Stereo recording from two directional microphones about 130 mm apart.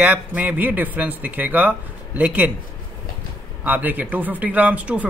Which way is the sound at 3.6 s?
15° right (ahead or behind).